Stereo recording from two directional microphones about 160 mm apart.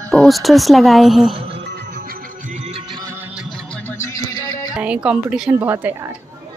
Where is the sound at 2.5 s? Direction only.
40° right (ahead or behind).